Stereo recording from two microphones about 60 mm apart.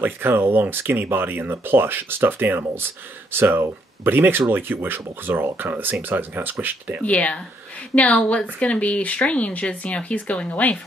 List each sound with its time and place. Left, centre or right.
0.0 s speech: right
7.0 s speech: left